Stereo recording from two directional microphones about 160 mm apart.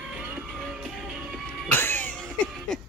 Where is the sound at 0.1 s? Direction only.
Centre (ahead or behind).